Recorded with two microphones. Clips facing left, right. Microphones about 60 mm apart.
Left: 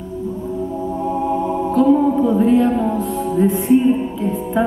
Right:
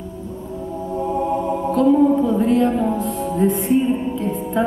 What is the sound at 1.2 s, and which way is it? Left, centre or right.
Music, centre.